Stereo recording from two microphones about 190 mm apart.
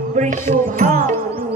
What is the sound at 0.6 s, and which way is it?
Music, 45° right (ahead or behind).